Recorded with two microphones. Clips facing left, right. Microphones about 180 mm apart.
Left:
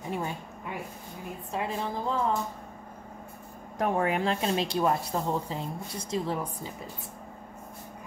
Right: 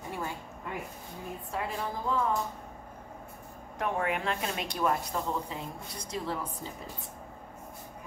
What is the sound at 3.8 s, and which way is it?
A woman's voice, 35° left (ahead or behind).